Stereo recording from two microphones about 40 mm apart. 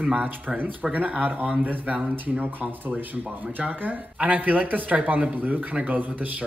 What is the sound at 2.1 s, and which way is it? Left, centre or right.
Speech, right.